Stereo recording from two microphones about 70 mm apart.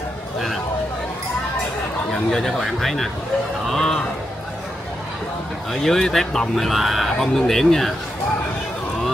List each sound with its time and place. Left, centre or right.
2.3 s speech: centre
3.6 s a sound: centre
5.7 s speech: centre